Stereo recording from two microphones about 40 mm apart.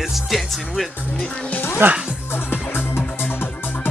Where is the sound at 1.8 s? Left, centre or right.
Right.